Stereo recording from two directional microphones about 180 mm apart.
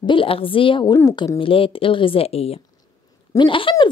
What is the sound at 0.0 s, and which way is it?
A woman's voice, 30° left (ahead or behind).